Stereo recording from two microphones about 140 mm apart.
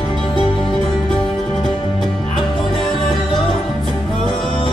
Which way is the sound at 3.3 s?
Centre (ahead or behind).